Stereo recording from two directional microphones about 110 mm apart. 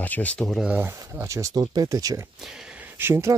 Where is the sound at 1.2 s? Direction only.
30° right (ahead or behind).